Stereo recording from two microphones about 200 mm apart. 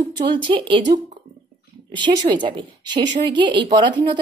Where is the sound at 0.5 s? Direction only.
25° right (ahead or behind).